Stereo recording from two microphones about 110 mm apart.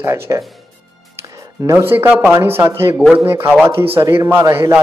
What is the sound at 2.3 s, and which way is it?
A man's voice, 25° right (ahead or behind).